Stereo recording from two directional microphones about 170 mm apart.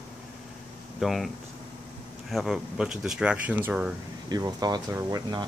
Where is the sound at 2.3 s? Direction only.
Centre (ahead or behind).